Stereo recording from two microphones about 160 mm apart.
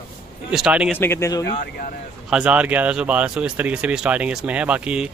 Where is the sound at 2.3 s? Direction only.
5° right (ahead or behind).